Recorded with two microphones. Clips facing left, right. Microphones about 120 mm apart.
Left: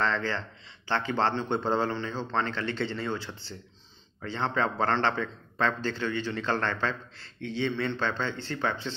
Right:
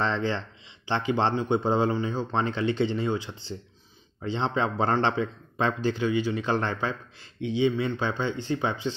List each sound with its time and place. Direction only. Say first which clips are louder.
0.0 s a man's voice: right 2 dB; 15° right (ahead or behind)